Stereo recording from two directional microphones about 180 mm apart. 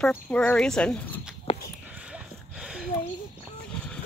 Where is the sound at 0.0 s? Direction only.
5° left (ahead or behind).